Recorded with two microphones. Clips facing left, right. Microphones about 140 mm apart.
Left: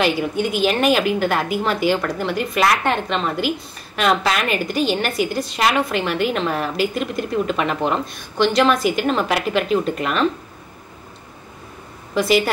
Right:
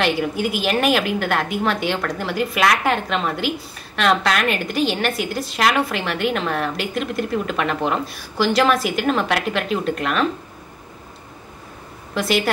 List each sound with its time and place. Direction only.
0.0 s a woman's voice: centre (ahead or behind)
12.1 s a woman's voice: centre (ahead or behind)